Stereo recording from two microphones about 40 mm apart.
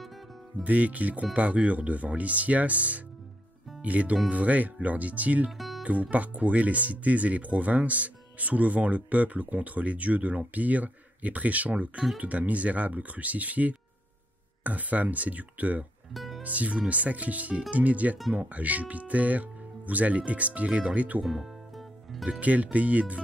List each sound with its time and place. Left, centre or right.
0.7 s speech: right
5.6 s music: centre
5.9 s speech: right
16.1 s music: centre
16.4 s speech: right
21.3 s music: centre
22.4 s speech: right